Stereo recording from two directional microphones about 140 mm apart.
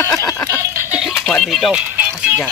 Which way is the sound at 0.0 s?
20° left (ahead or behind).